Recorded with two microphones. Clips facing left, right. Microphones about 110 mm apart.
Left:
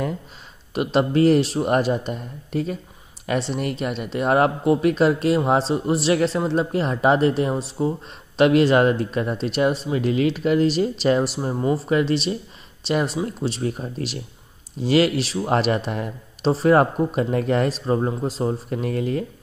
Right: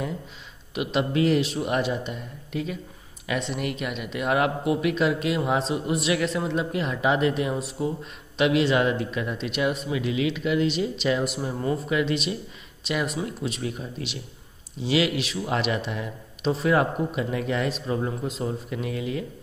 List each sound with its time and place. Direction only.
0.7 s speech: 40° left (ahead or behind)